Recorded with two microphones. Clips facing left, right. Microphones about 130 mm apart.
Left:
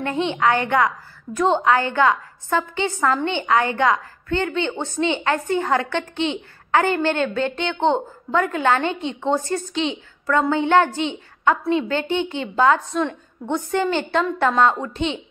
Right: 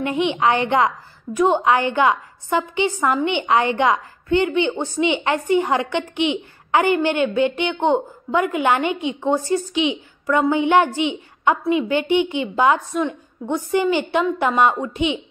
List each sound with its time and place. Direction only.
0.0 s a woman's voice: 15° right (ahead or behind)